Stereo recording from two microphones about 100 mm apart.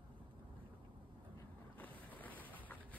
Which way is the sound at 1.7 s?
15° left (ahead or behind).